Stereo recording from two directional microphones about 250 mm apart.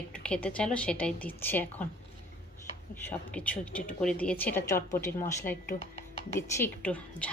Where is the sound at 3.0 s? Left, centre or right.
Centre.